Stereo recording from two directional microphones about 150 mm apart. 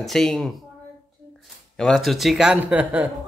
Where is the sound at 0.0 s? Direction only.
Centre (ahead or behind).